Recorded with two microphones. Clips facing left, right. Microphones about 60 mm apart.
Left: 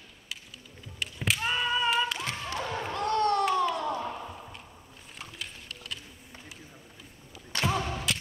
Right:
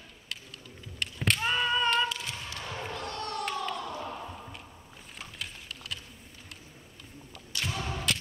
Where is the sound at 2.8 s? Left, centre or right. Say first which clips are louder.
Left 11 dB; left.